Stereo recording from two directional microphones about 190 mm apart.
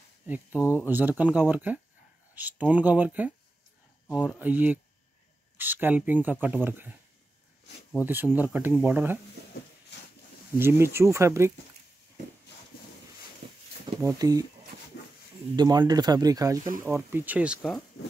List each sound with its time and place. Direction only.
0.6 s speech: 15° left (ahead or behind)
0.8 s speech: 10° right (ahead or behind)
4.4 s speech: 10° right (ahead or behind)
8.0 s speech: 10° right (ahead or behind)
10.6 s speech: 15° right (ahead or behind)
12.7 s a sound: 50° left (ahead or behind)
14.0 s speech: 20° right (ahead or behind)
15.5 s speech: 20° right (ahead or behind); by 17.8 s centre (ahead or behind)